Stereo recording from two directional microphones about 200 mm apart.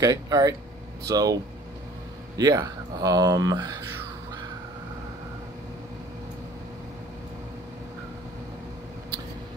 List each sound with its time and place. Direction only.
0.0 s speech: 20° right (ahead or behind)